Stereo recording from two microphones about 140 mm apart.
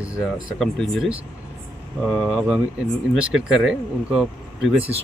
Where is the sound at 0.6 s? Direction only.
Centre (ahead or behind).